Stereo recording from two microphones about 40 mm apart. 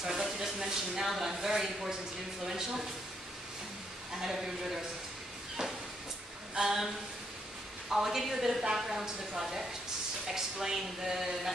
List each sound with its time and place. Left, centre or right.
0.0 s a sound: centre
1.0 s a woman's voice: centre
4.2 s a woman's voice: centre
5.6 s a sound: centre
6.5 s a woman's voice: centre
7.9 s a woman's voice: centre